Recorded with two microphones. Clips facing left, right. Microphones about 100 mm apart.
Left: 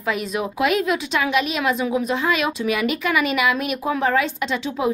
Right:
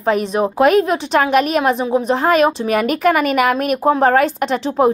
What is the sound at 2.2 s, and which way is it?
A woman's voice, 45° right (ahead or behind).